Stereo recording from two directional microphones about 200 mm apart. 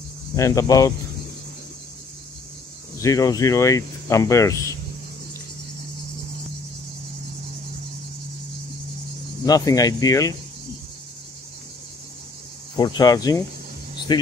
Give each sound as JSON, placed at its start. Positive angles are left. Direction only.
{"t": 0.4, "sound": "speech", "side_deg": 15}
{"t": 3.0, "sound": "speech", "side_deg": 15}
{"t": 9.4, "sound": "speech", "side_deg": 15}
{"t": 12.7, "sound": "speech", "side_deg": 20}